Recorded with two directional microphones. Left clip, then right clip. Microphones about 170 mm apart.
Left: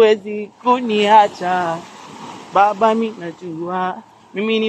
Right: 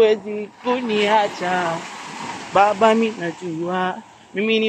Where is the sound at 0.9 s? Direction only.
30° left (ahead or behind).